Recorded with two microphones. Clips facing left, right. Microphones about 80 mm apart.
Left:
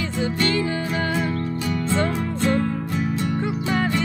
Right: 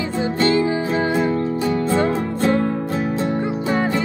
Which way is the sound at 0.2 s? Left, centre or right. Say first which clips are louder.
Right 5 dB; right.